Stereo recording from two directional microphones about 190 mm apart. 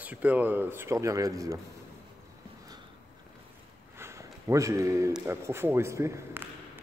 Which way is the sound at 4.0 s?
15° right (ahead or behind).